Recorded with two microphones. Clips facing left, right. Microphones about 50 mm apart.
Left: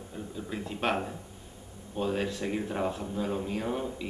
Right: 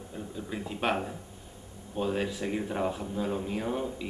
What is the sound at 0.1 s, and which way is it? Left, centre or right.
Speech, centre.